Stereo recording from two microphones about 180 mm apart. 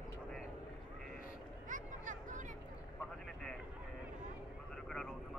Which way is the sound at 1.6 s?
45° right (ahead or behind).